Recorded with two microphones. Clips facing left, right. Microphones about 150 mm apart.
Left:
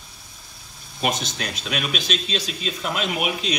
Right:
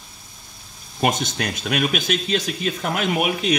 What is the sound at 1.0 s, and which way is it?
Speech, 50° right (ahead or behind).